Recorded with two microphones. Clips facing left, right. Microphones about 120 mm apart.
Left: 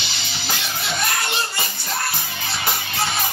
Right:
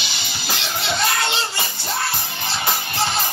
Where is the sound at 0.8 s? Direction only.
25° right (ahead or behind).